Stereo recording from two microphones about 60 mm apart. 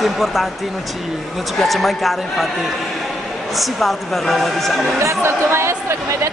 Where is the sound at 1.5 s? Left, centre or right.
Centre.